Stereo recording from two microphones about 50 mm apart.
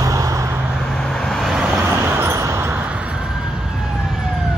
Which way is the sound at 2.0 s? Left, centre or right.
Right.